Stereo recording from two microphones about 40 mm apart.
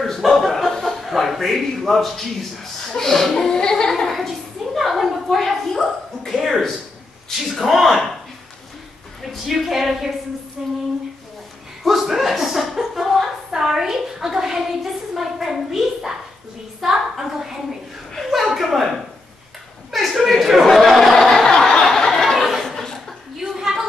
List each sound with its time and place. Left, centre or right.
0.0 s chuckle: centre
2.9 s speech: centre
3.4 s music: centre
3.9 s a sound: centre
7.3 s speech: centre
9.5 s a woman's voice: centre
12.1 s a woman's voice: centre
18.3 s a woman's voice: centre
19.9 s a sound: centre
21.5 s snicker: centre
21.9 s a sound: centre